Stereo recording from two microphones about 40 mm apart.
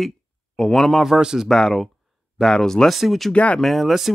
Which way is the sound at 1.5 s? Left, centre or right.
Centre.